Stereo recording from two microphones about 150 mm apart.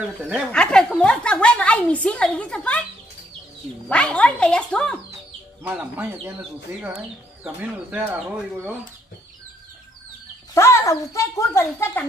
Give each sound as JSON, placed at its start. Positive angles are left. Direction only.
{"t": 0.0, "sound": "speech", "side_deg": -10}
{"t": 0.5, "sound": "a woman's voice", "side_deg": 5}
{"t": 3.9, "sound": "a woman's voice", "side_deg": 5}
{"t": 5.6, "sound": "speech", "side_deg": -10}
{"t": 7.4, "sound": "speech", "side_deg": -10}
{"t": 10.5, "sound": "speech", "side_deg": 20}